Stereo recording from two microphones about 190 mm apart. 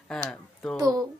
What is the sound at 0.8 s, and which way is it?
Speech, 20° right (ahead or behind).